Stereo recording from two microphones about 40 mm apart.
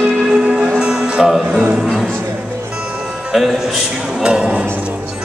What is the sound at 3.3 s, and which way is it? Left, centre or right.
Music, centre.